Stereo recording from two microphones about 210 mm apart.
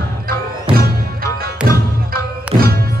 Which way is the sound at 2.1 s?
45° right (ahead or behind).